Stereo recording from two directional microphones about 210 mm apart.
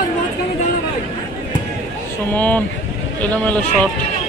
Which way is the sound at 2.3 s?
5° left (ahead or behind).